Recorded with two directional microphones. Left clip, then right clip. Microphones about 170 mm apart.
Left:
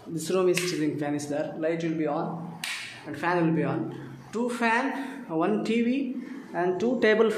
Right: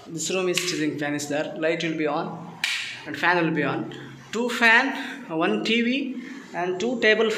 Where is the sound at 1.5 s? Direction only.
10° right (ahead or behind); by 6.0 s 5° left (ahead or behind).